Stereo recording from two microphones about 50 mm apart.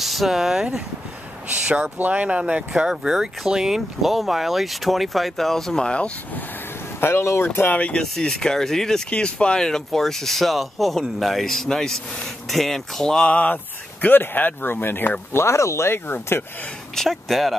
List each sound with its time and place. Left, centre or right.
0.0 s speech: centre
1.5 s speech: right
2.7 s speech: centre; by 6.1 s left
7.0 s speech: left
7.9 s speech: centre
9.1 s speech: centre
13.3 s speech: left
14.0 s speech: left
15.4 s speech: left
16.9 s speech: centre